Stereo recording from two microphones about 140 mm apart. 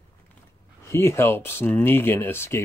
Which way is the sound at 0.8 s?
20° left (ahead or behind).